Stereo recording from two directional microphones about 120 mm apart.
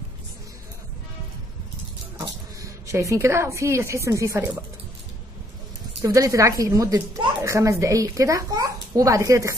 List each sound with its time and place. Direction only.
2.1 s speech: 25° right (ahead or behind)
6.0 s speech: 30° right (ahead or behind)